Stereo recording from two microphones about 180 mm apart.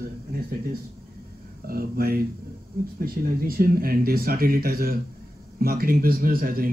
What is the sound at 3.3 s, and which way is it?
A man's voice, 55° right (ahead or behind).